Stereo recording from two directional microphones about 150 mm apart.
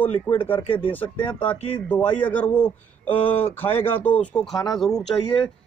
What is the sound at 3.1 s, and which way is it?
Speech, 40° left (ahead or behind).